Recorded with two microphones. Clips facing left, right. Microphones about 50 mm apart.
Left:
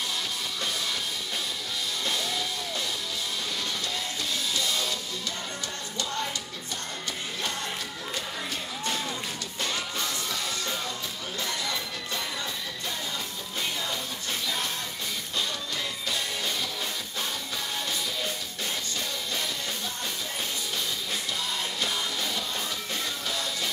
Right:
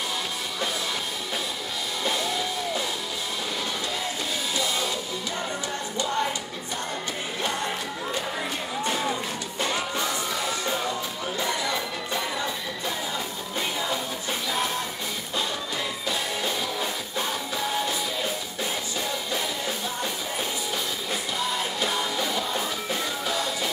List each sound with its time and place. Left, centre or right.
2.0 s music: centre
4.6 s music: centre
5.9 s music: centre
7.4 s music: centre
17.7 s music: centre
21.4 s music: centre